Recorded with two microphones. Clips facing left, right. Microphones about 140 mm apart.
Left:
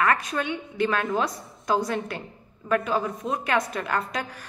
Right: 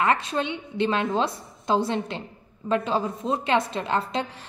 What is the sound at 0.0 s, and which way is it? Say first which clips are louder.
A woman's voice: right 1 dB; 25° right (ahead or behind).